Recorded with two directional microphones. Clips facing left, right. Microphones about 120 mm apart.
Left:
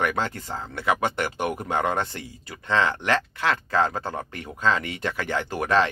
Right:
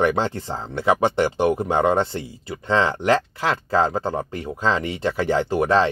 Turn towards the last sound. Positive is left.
turn(degrees=-30)  # may be behind; listen again after turning